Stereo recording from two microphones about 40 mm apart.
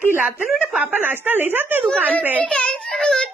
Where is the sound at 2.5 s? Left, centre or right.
Left.